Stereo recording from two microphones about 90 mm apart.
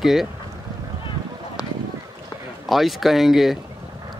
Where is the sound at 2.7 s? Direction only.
Centre (ahead or behind).